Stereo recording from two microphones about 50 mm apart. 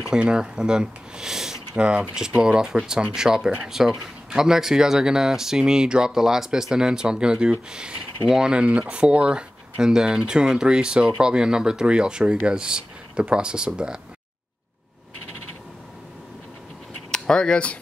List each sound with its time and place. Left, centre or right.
0.2 s speech: centre
1.8 s speech: right
17.1 s speech: centre